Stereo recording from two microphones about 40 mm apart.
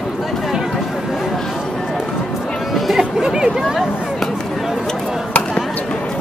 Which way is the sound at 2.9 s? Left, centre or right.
Centre.